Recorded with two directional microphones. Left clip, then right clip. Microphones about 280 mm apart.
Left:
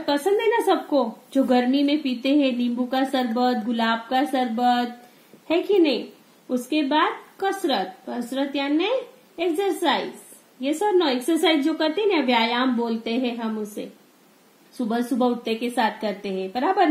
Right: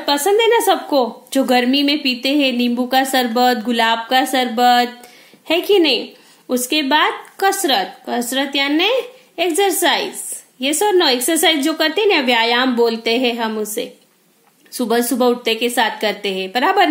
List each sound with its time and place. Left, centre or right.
0.0 s a woman's voice: centre
10.6 s a woman's voice: right
14.9 s a woman's voice: centre